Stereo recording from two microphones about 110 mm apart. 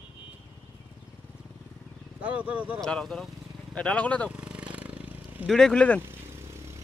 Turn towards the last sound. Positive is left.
turn(degrees=-25)  # may be behind; listen again after turning